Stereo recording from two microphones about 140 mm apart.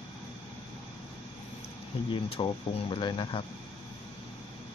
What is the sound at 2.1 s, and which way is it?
Speech, 40° left (ahead or behind).